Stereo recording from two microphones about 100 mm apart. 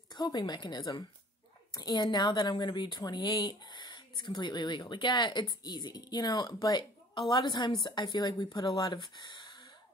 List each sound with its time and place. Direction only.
0.1 s a woman's voice: 45° left (ahead or behind)